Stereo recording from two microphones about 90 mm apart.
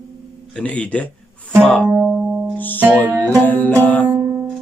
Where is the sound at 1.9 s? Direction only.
10° right (ahead or behind).